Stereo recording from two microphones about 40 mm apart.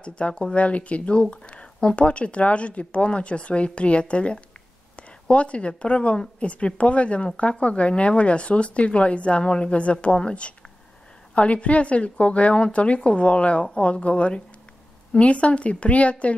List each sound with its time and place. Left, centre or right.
0.0 s speech: left